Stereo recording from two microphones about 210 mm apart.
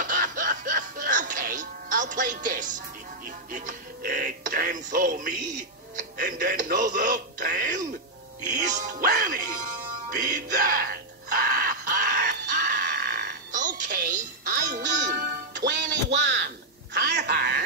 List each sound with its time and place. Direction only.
0.0 s music: 40° right (ahead or behind)
5.9 s speech: 40° right (ahead or behind)
8.5 s music: 40° right (ahead or behind)
12.6 s music: 55° right (ahead or behind)
16.1 s a sound: 55° right (ahead or behind)